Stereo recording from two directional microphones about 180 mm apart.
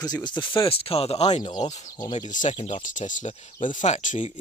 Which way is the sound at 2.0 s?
25° left (ahead or behind).